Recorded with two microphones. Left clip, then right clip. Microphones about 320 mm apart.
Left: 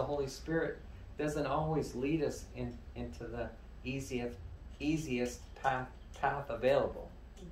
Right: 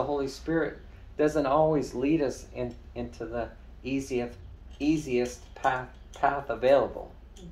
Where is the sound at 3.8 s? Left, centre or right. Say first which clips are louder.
Right 8 dB; centre.